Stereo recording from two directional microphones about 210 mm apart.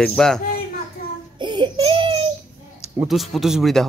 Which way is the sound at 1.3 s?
20° right (ahead or behind).